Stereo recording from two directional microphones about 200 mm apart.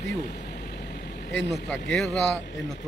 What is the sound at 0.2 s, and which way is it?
Vehicle, 50° left (ahead or behind).